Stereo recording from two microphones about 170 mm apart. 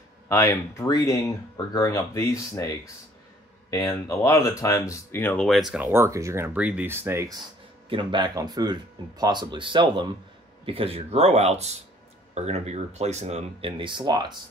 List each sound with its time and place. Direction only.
0.3 s speech: 15° left (ahead or behind)
3.7 s speech: 15° left (ahead or behind); by 5.9 s centre (ahead or behind)
5.9 s speech: 15° right (ahead or behind)
7.9 s speech: 30° right (ahead or behind)